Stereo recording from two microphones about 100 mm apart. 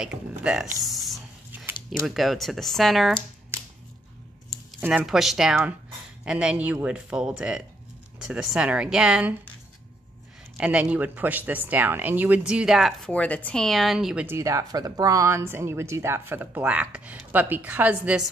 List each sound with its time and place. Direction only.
0.0 s speech: 10° right (ahead or behind)
0.8 s a sound: centre (ahead or behind)
1.9 s speech: centre (ahead or behind)
4.7 s speech: 10° right (ahead or behind)
10.6 s speech: 10° right (ahead or behind)
13.1 s speech: 15° left (ahead or behind); by 14.2 s 5° right (ahead or behind)
14.2 s speech: 30° right (ahead or behind); by 18.3 s 10° right (ahead or behind)